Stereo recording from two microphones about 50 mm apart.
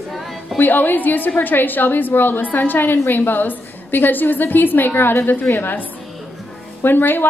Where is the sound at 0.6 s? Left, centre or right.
Left.